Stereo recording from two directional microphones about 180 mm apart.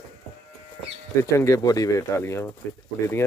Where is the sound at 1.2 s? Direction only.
15° left (ahead or behind).